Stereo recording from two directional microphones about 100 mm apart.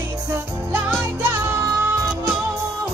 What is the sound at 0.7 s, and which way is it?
Music, 20° right (ahead or behind).